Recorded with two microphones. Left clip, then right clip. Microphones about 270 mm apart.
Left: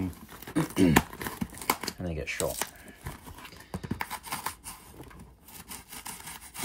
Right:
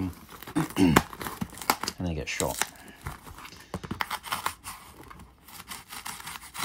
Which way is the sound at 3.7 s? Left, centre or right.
Centre.